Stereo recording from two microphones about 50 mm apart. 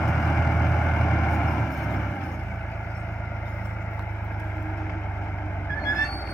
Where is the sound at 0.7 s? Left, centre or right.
Centre.